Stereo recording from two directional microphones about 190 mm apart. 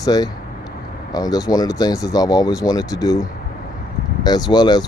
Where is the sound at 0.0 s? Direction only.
20° left (ahead or behind).